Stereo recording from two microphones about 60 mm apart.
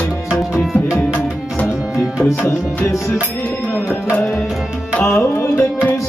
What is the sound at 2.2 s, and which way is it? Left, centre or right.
Tabla, left.